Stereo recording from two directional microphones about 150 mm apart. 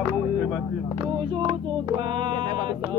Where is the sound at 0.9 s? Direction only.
40° right (ahead or behind).